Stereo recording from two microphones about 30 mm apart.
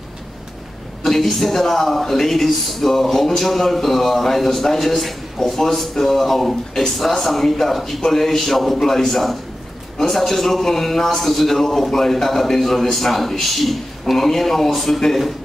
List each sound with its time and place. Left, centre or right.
1.0 s a man's voice: centre